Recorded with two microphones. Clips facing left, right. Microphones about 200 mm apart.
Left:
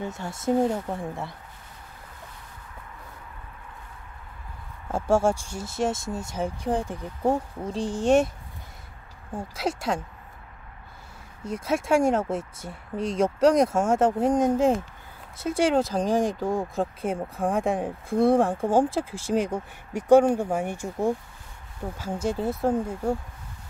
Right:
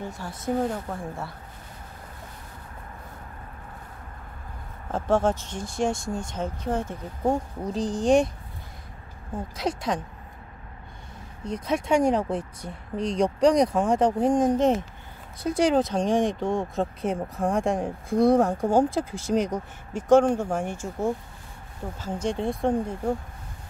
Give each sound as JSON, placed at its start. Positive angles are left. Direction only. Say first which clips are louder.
{"t": 0.0, "sound": "speech", "louder": "left 3 dB", "side_deg": 25}
{"t": 4.9, "sound": "speech", "louder": "left 1 dB", "side_deg": 10}
{"t": 7.6, "sound": "speech", "louder": "right 1 dB", "side_deg": 0}
{"t": 9.6, "sound": "speech", "louder": "even", "side_deg": 5}
{"t": 11.4, "sound": "speech", "louder": "even", "side_deg": 5}
{"t": 21.9, "sound": "speech", "louder": "even", "side_deg": 10}